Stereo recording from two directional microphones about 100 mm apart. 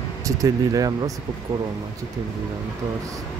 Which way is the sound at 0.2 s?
35° right (ahead or behind).